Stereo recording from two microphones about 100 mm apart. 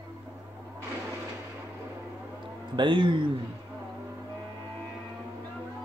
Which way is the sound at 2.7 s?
55° right (ahead or behind).